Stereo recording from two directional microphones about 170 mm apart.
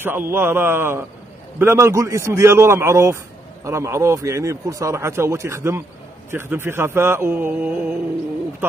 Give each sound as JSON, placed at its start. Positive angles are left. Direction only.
{"t": 0.0, "sound": "speech", "side_deg": -15}